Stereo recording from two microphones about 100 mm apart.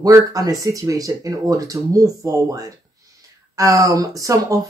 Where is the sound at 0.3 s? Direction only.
35° right (ahead or behind).